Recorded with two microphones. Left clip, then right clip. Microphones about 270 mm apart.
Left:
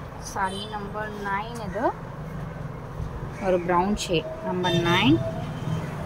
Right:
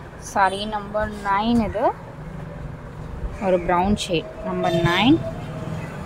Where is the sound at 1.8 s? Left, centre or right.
Right.